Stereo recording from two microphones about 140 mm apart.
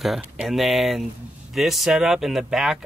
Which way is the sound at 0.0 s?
Centre (ahead or behind).